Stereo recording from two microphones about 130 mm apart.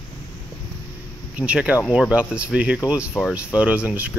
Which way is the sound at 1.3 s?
10° right (ahead or behind).